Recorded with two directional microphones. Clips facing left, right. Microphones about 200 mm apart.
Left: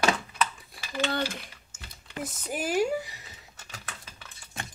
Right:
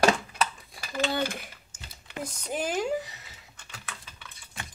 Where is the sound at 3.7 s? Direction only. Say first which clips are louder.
Even; 40° left (ahead or behind).